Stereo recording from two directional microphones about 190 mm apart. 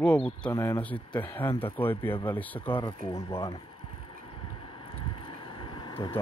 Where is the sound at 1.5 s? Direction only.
30° left (ahead or behind).